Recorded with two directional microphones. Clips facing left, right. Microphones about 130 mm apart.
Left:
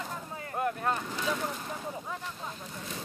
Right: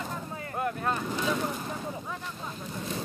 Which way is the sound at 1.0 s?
20° right (ahead or behind).